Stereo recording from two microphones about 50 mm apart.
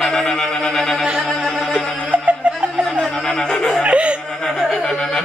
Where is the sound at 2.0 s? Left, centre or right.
Right.